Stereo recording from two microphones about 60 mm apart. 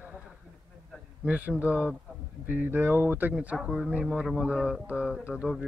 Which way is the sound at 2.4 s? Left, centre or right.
Right.